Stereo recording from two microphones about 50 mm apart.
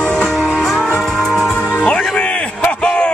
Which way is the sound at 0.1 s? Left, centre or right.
Centre.